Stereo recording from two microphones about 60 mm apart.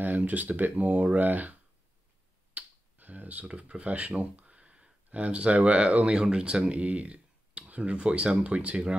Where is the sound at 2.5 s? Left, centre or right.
Right.